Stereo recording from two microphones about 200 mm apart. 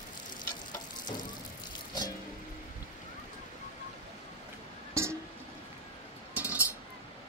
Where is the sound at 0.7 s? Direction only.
20° left (ahead or behind).